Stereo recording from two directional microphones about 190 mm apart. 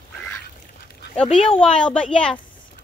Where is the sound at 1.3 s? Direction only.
30° left (ahead or behind).